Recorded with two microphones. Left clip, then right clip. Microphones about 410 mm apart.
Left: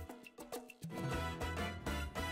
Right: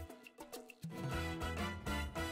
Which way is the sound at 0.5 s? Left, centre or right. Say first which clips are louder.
Left 5 dB; left.